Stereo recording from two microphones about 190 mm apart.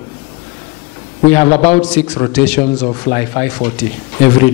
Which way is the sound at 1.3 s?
10° left (ahead or behind).